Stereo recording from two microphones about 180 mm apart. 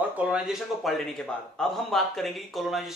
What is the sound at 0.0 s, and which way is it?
A man's voice, 5° right (ahead or behind).